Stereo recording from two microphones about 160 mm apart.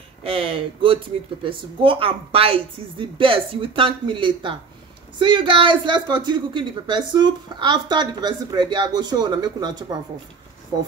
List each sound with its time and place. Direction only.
0.2 s a woman's voice: 35° right (ahead or behind)